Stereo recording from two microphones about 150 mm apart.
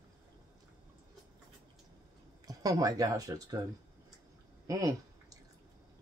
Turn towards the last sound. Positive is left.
turn(degrees=-25)  # may be behind; listen again after turning